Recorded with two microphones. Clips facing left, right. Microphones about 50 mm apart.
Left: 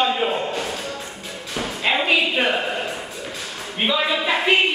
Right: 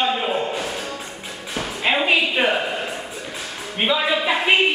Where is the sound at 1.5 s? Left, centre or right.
Centre.